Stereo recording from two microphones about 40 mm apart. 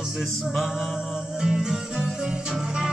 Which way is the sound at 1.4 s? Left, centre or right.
Centre.